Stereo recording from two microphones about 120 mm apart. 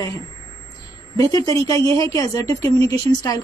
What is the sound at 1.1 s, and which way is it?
A woman's voice, 30° left (ahead or behind).